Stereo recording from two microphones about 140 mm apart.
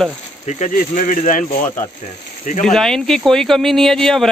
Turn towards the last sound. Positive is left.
turn(degrees=5)  # may be behind; listen again after turning